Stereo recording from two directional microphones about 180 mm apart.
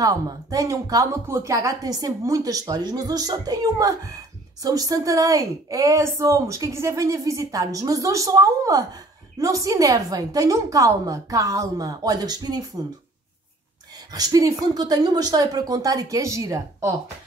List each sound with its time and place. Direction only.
0.0 s a woman's voice: 20° right (ahead or behind)
14.1 s a woman's voice: 20° right (ahead or behind)